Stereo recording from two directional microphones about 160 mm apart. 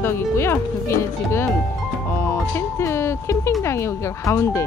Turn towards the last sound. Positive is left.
turn(degrees=15)  # may be behind; listen again after turning